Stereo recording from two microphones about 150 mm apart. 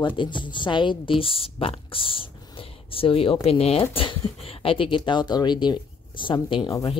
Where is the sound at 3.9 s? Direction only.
40° left (ahead or behind).